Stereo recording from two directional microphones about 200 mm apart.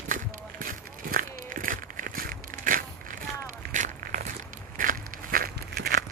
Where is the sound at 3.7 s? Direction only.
40° right (ahead or behind).